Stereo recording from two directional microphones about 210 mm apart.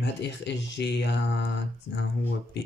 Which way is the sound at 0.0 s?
55° left (ahead or behind).